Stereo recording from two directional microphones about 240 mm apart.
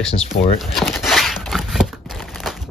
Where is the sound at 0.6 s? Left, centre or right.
Centre.